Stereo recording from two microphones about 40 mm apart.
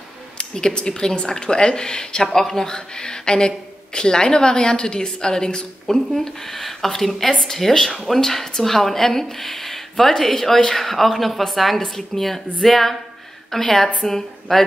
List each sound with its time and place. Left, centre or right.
0.4 s speech: left
5.9 s a woman's voice: centre